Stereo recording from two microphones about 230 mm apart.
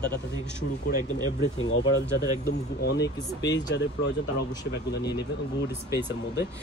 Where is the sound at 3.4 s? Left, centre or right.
Left.